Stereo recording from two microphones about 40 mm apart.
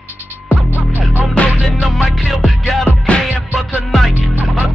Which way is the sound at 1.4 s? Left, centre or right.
Left.